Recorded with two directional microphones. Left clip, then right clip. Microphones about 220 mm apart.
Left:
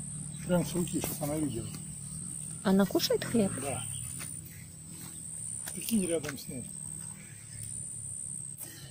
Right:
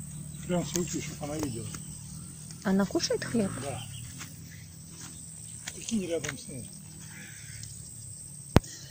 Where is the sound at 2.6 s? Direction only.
15° left (ahead or behind).